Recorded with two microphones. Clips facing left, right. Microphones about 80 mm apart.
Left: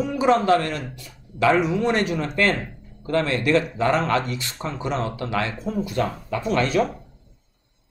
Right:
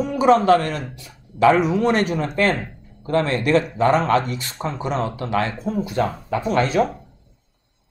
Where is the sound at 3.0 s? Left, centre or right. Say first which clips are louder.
Right 2 dB; right.